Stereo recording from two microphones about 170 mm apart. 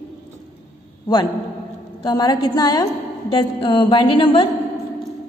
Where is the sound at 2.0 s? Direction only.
25° left (ahead or behind).